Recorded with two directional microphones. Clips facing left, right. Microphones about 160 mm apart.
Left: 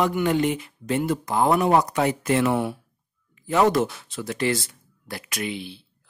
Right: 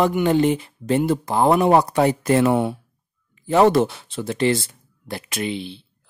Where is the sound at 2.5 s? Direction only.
25° right (ahead or behind).